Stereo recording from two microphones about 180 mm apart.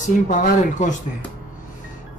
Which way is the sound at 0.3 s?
45° left (ahead or behind).